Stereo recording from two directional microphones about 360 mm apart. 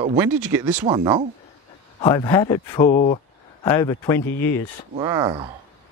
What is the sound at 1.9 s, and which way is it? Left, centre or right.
Speech, centre.